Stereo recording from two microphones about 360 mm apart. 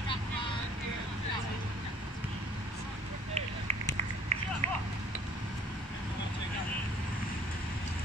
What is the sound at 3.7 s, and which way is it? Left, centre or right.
Run, centre.